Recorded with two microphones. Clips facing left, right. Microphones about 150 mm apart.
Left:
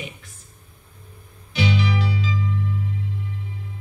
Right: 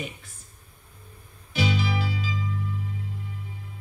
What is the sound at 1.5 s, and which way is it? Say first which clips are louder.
Music: left 3 dB; 40° right (ahead or behind).